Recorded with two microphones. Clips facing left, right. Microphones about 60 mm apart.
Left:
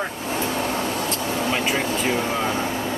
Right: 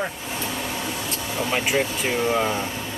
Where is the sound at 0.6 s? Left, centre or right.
Left.